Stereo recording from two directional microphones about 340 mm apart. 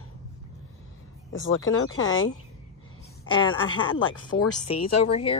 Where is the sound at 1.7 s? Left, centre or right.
Left.